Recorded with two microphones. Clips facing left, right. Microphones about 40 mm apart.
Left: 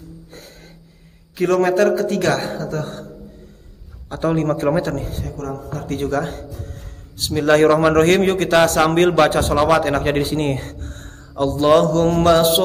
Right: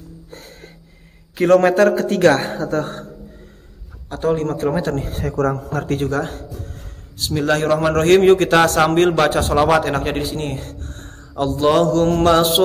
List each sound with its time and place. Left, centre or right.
0.3 s a sound: centre
1.3 s a man's voice: centre
4.1 s a man's voice: centre
5.2 s a man's voice: right
5.9 s a man's voice: centre
8.2 s a man's voice: centre
10.3 s a man's voice: centre